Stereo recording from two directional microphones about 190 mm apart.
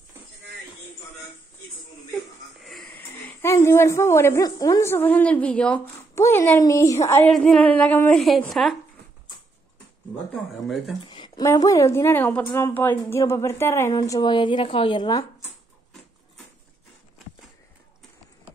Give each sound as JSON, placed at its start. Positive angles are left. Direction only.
{"t": 2.1, "sound": "speech", "side_deg": 0}
{"t": 7.2, "sound": "a woman's voice", "side_deg": 5}
{"t": 10.1, "sound": "a woman's voice", "side_deg": 0}
{"t": 11.0, "sound": "a woman's voice", "side_deg": 25}